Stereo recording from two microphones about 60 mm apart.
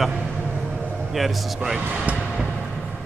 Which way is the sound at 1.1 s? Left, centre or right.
Centre.